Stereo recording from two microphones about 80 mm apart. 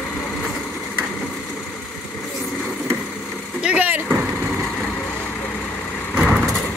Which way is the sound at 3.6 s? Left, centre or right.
Centre.